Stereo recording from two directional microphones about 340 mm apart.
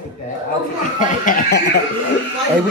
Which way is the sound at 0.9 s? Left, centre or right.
Left.